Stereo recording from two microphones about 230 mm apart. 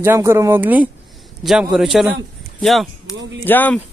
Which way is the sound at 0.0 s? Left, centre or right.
Centre.